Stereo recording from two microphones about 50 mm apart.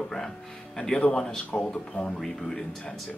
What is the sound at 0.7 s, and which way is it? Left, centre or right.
Speech, centre.